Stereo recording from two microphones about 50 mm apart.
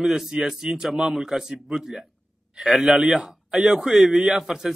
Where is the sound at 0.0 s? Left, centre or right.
Centre.